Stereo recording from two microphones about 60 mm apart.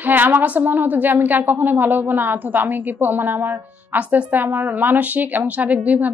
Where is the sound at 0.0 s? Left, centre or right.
Right.